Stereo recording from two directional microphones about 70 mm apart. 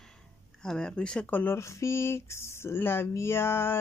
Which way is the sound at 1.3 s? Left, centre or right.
Left.